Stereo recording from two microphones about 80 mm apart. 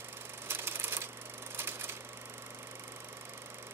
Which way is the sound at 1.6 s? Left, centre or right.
Right.